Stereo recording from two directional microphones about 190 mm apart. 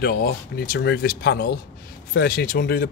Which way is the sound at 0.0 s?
55° left (ahead or behind).